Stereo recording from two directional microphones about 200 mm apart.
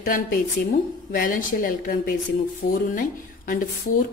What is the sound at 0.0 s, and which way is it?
A woman's voice, 45° left (ahead or behind).